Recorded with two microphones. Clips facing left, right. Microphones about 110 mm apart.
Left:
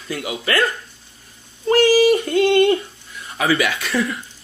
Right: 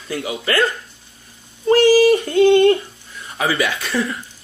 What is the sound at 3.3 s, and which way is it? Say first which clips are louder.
Speech: left 1 dB; 30° right (ahead or behind).